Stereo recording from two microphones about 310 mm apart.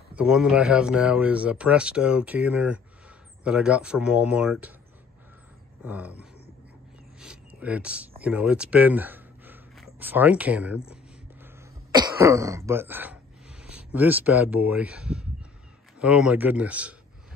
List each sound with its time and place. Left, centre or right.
0.1 s speech: centre
5.9 s speech: centre
11.4 s throat clearing: centre
16.0 s speech: centre